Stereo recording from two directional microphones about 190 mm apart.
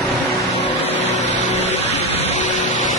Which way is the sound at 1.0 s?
35° left (ahead or behind).